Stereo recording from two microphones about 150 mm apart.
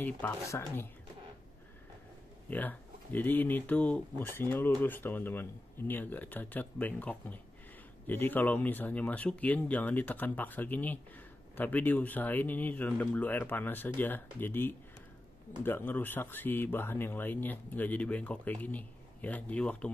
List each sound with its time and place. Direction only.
0.0 s speech: 15° left (ahead or behind)
2.5 s speech: 10° left (ahead or behind)